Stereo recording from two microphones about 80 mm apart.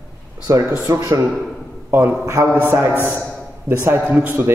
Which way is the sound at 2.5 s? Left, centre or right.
Right.